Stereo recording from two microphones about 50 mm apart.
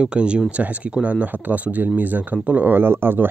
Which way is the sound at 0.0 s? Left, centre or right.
Right.